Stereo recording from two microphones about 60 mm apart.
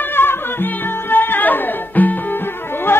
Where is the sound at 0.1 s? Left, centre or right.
Left.